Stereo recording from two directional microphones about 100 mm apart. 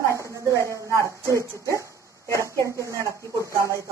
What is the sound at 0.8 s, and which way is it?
Speech, 30° right (ahead or behind).